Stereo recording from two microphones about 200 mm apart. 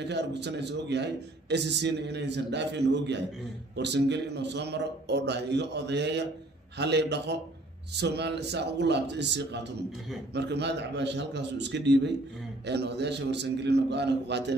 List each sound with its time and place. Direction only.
0.0 s a man's voice: 60° right (ahead or behind)